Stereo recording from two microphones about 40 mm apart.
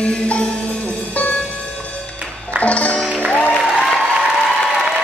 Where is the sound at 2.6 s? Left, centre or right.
Left.